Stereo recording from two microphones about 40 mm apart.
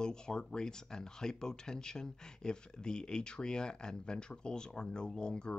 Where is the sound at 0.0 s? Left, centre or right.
Centre.